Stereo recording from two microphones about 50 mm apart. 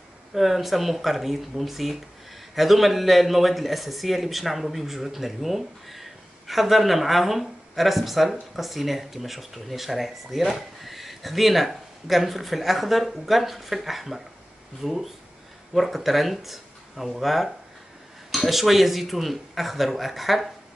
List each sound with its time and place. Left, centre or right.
0.3 s speech: centre